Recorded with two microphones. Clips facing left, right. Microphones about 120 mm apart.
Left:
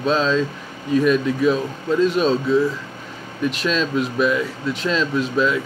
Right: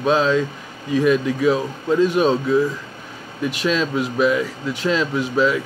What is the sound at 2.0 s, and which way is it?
Speech, 15° right (ahead or behind).